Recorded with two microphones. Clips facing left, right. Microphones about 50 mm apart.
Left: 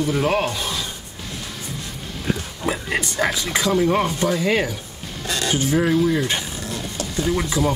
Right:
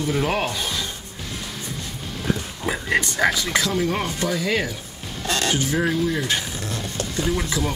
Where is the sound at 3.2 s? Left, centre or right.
Centre.